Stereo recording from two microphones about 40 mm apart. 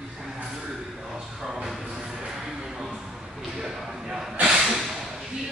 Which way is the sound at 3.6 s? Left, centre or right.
Centre.